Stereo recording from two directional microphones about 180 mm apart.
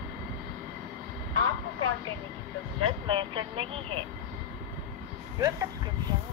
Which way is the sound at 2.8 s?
25° right (ahead or behind).